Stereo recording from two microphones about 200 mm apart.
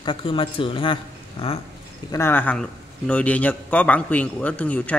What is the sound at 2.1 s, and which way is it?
A man's voice, 10° left (ahead or behind).